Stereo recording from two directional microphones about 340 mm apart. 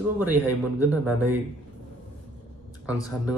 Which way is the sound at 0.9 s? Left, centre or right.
Centre.